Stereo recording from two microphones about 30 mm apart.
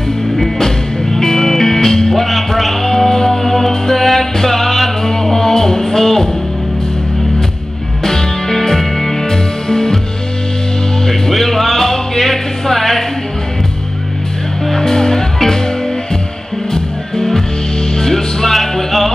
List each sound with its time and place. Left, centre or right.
0.6 s music: centre
2.2 s music: centre
8.0 s music: centre
11.1 s music: centre
14.7 s music: centre
17.9 s music: centre